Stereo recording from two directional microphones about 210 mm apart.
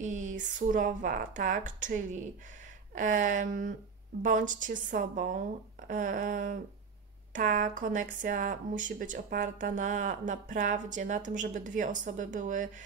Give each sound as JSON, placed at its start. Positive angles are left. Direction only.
{"t": 0.0, "sound": "speech", "side_deg": -35}